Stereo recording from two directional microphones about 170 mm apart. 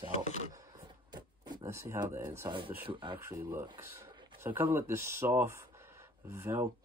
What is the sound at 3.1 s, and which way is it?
Speech, 15° right (ahead or behind).